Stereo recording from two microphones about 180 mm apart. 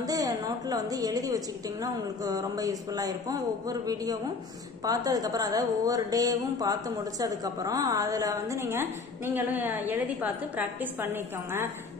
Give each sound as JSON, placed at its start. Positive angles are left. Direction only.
{"t": 0.0, "sound": "a woman's voice", "side_deg": -20}